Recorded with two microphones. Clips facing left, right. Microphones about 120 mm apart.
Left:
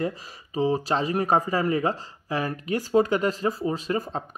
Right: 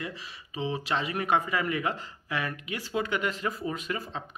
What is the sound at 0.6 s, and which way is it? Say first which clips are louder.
Speech: left 7 dB; 40° left (ahead or behind).